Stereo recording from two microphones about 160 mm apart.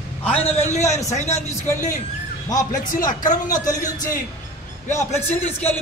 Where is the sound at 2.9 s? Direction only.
55° left (ahead or behind).